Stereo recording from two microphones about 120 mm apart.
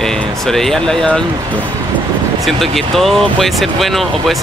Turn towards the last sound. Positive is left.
turn(degrees=0)  # may be behind; listen again after turning